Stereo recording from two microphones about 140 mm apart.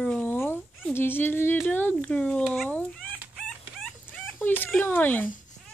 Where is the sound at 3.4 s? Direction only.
5° left (ahead or behind).